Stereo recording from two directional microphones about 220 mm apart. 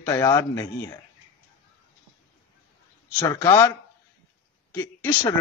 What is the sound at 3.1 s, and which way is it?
Speech, 10° left (ahead or behind).